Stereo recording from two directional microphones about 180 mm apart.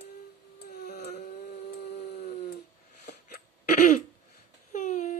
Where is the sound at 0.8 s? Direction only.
65° left (ahead or behind).